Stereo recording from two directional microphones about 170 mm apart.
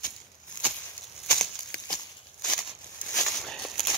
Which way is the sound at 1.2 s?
5° left (ahead or behind).